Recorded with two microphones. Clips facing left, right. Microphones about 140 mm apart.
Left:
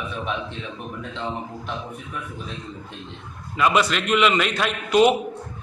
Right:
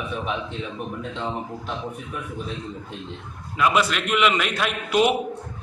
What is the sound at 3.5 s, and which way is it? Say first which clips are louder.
A man's voice: left 1 dB; centre (ahead or behind).